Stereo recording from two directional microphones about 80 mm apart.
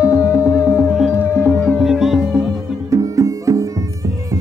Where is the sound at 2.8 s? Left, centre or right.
Right.